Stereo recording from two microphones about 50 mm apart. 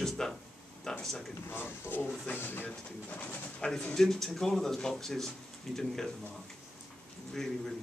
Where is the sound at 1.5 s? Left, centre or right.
Left.